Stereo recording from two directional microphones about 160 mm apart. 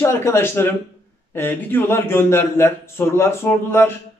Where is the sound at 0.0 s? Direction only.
15° left (ahead or behind).